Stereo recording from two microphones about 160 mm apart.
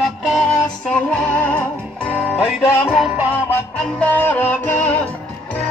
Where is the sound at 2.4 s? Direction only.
5° right (ahead or behind).